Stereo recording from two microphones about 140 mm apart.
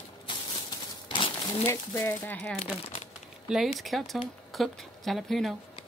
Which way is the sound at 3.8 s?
Centre (ahead or behind).